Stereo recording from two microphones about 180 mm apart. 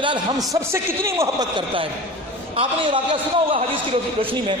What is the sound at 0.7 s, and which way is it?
Speech, 15° right (ahead or behind).